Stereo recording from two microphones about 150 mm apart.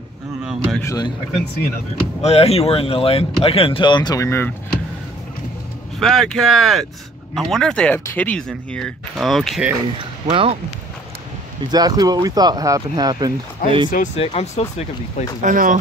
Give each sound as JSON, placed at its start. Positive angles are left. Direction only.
{"t": 0.4, "sound": "speech", "side_deg": -5}
{"t": 0.8, "sound": "speech", "side_deg": 25}
{"t": 2.2, "sound": "speech", "side_deg": 45}
{"t": 5.9, "sound": "speech", "side_deg": 0}
{"t": 10.3, "sound": "speech", "side_deg": -40}
{"t": 11.7, "sound": "speech", "side_deg": -25}
{"t": 13.6, "sound": "speech", "side_deg": 65}
{"t": 14.1, "sound": "speech", "side_deg": 45}
{"t": 15.4, "sound": "speech", "side_deg": -60}